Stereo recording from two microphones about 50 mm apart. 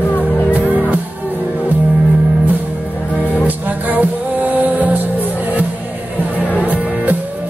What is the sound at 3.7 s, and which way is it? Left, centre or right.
Music, right.